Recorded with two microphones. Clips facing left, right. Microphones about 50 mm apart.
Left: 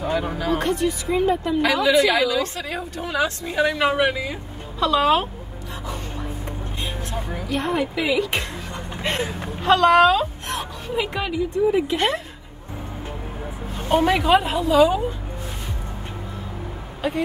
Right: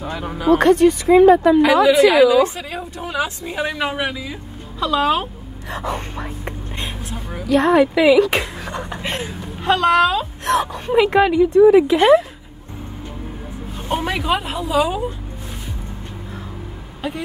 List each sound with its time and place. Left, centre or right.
0.0 s a sound: centre
0.6 s speech: right
1.9 s a woman's voice: centre
5.7 s a sound: right
7.1 s a woman's voice: centre
7.4 s speech: right
9.0 s a woman's voice: centre
10.4 s a woman's voice: right
10.9 s speech: right
13.7 s a woman's voice: centre